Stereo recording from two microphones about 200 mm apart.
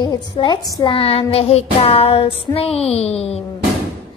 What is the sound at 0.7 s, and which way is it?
Child singing, 20° left (ahead or behind).